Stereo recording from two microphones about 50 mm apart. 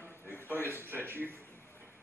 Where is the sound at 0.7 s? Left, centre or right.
Right.